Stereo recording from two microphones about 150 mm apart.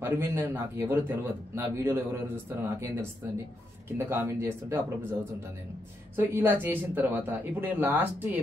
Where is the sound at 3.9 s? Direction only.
15° right (ahead or behind).